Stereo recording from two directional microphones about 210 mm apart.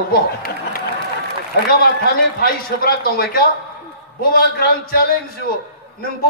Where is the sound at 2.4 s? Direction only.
45° left (ahead or behind).